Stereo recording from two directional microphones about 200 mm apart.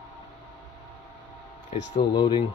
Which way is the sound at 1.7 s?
25° left (ahead or behind).